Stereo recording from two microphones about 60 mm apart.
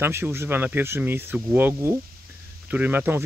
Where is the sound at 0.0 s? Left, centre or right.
Right.